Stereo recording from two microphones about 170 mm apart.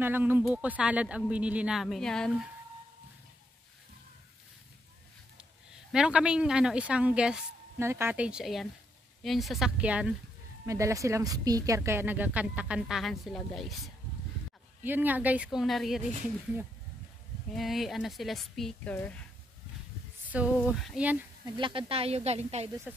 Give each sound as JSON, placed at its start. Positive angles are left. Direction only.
{"t": 0.0, "sound": "a woman's voice", "side_deg": -10}
{"t": 5.4, "sound": "a woman's voice", "side_deg": -5}
{"t": 10.6, "sound": "a woman's voice", "side_deg": -20}
{"t": 14.8, "sound": "a woman's voice", "side_deg": -10}
{"t": 17.6, "sound": "speech", "side_deg": 0}
{"t": 20.2, "sound": "a woman's voice", "side_deg": -10}
{"t": 21.5, "sound": "speech", "side_deg": -30}
{"t": 22.9, "sound": "speech", "side_deg": -5}